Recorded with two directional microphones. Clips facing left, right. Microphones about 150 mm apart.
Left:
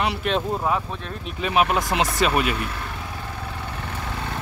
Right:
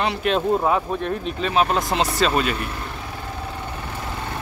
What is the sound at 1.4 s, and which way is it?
Speech, 15° left (ahead or behind).